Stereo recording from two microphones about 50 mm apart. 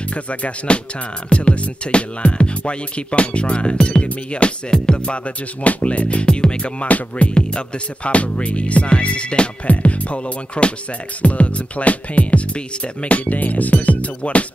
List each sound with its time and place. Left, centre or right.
0.1 s speech: left